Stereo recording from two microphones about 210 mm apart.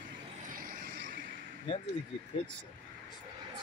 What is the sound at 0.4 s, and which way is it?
Vehicle, 40° right (ahead or behind).